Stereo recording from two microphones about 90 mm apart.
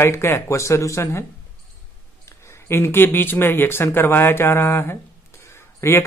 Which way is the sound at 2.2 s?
30° left (ahead or behind).